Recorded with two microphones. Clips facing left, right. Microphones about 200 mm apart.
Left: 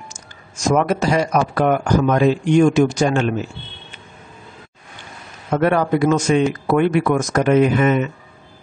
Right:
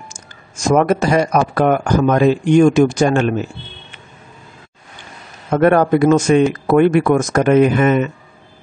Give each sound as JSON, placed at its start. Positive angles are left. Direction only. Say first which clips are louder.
{"t": 0.1, "sound": "speech", "louder": "right 1 dB", "side_deg": -50}
{"t": 5.5, "sound": "speech", "louder": "right 4 dB", "side_deg": -50}